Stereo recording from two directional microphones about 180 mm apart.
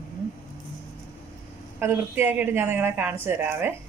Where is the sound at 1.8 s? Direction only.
10° right (ahead or behind).